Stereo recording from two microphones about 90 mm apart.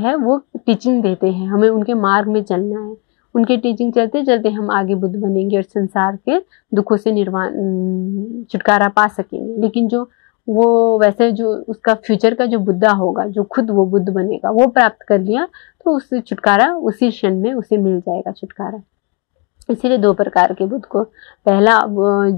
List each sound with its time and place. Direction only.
0.0 s speech: 25° left (ahead or behind)
19.6 s speech: 25° left (ahead or behind)